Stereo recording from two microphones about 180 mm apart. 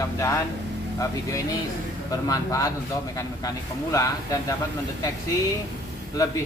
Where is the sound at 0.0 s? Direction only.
20° left (ahead or behind).